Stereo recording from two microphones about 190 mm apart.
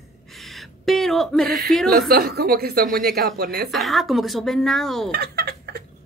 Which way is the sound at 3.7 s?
Centre (ahead or behind).